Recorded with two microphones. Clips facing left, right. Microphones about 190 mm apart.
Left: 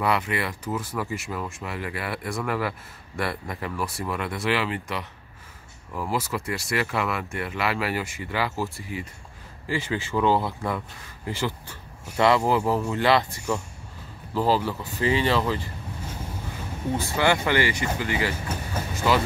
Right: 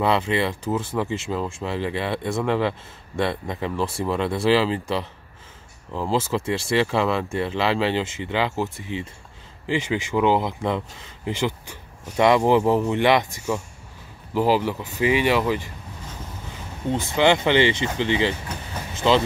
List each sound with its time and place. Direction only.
0.0 s speech: 25° right (ahead or behind)
16.9 s speech: 20° right (ahead or behind)